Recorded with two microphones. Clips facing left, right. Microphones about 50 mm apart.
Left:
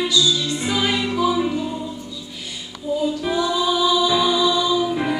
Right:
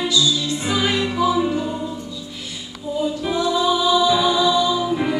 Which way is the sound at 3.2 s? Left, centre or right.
Centre.